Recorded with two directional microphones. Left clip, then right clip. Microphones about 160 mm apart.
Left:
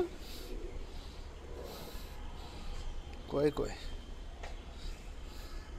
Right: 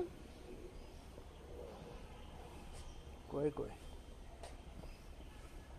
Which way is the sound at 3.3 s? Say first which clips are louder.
Left 8 dB; 10° left (ahead or behind).